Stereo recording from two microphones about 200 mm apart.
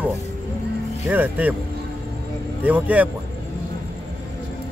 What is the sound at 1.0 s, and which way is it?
Speech, 10° right (ahead or behind).